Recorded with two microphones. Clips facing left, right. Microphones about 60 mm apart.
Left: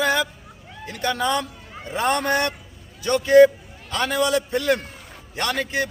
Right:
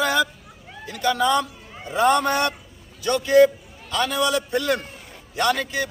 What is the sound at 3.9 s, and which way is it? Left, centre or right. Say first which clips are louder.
A man's voice: left 1 dB; left.